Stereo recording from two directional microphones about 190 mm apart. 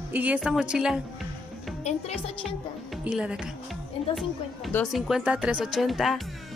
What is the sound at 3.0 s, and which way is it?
Speech, 5° right (ahead or behind).